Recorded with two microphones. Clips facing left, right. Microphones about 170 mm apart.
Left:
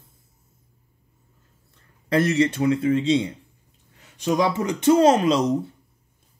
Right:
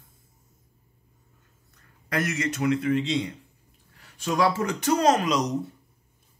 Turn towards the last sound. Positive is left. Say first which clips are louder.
# left 5 dB
turn(degrees=30)  # may be behind; listen again after turning